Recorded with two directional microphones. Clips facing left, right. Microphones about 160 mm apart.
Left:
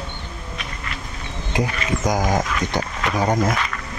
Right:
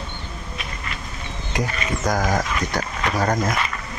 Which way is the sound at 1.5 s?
20° left (ahead or behind).